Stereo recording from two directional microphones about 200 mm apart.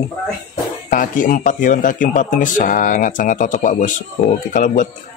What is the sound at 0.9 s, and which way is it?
Speech, 45° left (ahead or behind).